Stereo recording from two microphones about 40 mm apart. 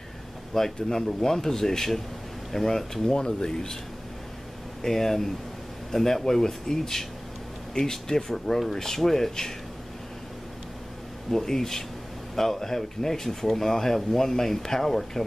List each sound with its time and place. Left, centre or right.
0.6 s speech: centre
4.8 s speech: centre
11.2 s speech: centre